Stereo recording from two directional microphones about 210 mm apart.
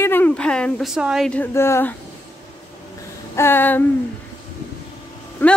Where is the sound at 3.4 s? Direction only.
10° left (ahead or behind).